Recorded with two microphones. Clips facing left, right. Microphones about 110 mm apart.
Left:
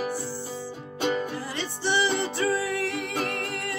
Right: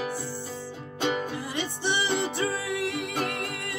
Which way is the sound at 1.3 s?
20° right (ahead or behind).